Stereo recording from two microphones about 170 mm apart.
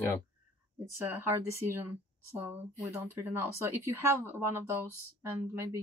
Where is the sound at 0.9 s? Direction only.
15° right (ahead or behind).